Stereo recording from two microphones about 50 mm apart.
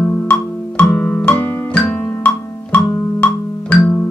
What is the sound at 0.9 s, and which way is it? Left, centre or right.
Music, left.